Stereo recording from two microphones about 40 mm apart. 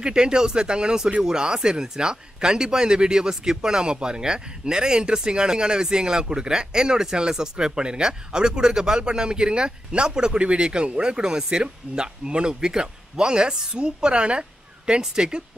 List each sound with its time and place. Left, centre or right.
0.0 s speech: centre